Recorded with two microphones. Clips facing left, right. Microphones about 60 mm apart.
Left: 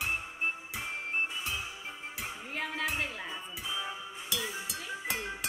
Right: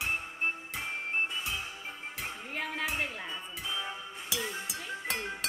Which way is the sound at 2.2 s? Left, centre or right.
Centre.